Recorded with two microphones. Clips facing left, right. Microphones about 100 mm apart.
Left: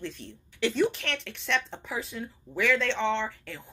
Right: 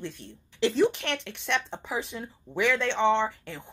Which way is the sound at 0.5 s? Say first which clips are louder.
Right 3 dB; 30° right (ahead or behind).